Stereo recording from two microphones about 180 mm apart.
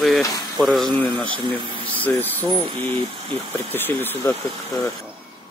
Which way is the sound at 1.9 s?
10° left (ahead or behind).